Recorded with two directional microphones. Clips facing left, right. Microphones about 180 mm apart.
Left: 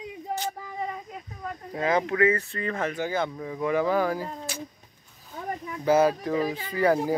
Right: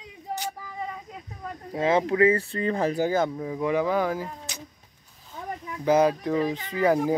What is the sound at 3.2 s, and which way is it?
Speech, 15° right (ahead or behind).